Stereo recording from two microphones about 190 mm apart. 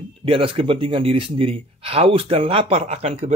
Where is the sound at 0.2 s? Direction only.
30° right (ahead or behind).